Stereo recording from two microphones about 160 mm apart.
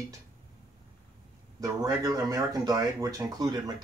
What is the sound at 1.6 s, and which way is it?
Speech, 20° right (ahead or behind).